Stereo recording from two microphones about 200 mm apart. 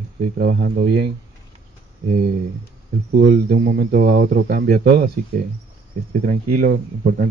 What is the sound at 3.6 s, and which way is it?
Speech, 55° right (ahead or behind).